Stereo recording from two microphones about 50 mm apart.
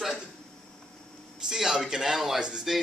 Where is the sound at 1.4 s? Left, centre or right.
Centre.